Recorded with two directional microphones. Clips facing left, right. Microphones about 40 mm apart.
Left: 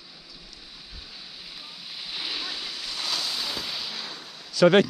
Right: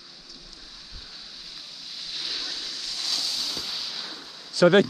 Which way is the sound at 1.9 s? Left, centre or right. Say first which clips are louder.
Left 1 dB; left.